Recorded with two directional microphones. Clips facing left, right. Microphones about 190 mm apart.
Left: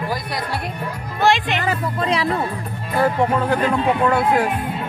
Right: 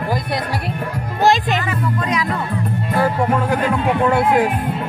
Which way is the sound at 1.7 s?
30° left (ahead or behind).